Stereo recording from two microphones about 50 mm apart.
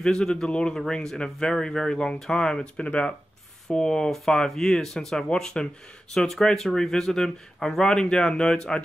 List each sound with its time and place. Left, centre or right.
0.0 s speech: centre